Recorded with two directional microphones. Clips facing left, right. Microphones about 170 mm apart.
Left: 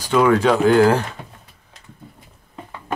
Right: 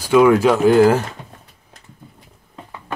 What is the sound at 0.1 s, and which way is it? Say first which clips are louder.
Speech: right 3 dB; 10° right (ahead or behind).